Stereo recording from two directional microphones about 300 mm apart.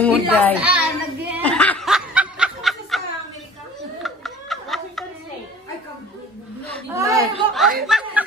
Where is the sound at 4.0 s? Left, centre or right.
Centre.